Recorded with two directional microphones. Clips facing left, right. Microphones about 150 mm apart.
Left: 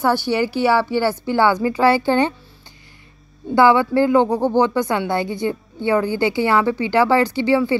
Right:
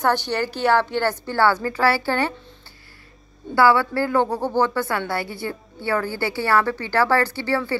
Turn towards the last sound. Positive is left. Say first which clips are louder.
# left 6 dB
turn(degrees=15)  # may be behind; listen again after turning